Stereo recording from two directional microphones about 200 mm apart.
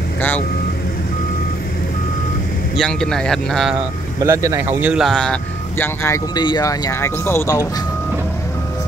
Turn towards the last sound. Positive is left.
turn(degrees=15)  # may be behind; listen again after turning